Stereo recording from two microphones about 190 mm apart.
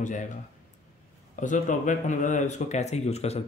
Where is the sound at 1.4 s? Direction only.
40° left (ahead or behind).